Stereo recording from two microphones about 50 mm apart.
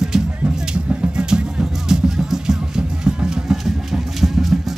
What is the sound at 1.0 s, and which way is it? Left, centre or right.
Music, centre.